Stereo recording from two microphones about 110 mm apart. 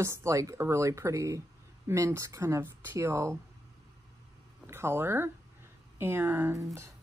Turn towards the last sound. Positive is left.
turn(degrees=-25)  # may be behind; listen again after turning